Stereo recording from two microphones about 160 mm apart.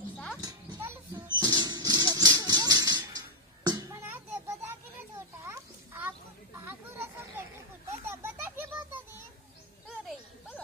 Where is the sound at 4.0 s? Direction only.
15° right (ahead or behind).